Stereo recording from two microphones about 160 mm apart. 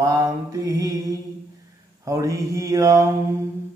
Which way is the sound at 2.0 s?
20° right (ahead or behind).